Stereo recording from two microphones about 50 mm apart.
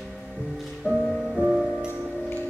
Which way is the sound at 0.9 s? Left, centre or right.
Left.